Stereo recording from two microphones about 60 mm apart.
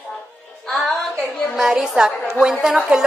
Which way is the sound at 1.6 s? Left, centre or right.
Centre.